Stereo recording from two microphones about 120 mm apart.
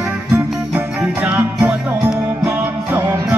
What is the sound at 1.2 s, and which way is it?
Music, 5° right (ahead or behind).